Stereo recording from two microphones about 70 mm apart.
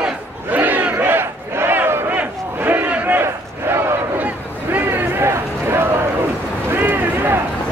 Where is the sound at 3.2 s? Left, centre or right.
Right.